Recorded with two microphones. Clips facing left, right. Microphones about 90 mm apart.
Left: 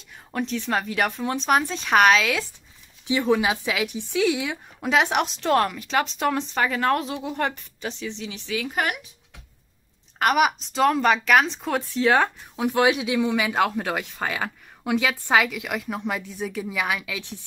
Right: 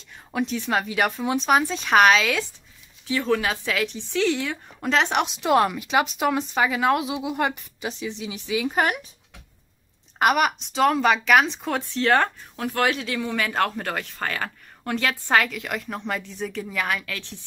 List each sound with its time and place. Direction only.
0.3 s speech: 5° right (ahead or behind)
3.1 s speech: 15° left (ahead or behind); by 8.7 s 15° right (ahead or behind)
8.7 s speech: 35° right (ahead or behind)
10.3 s speech: centre (ahead or behind)